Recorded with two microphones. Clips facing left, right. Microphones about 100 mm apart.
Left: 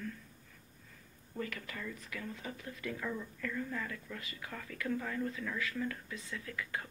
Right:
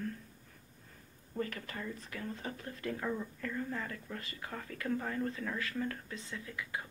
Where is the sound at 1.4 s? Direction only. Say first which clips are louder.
Right 2 dB; 35° right (ahead or behind).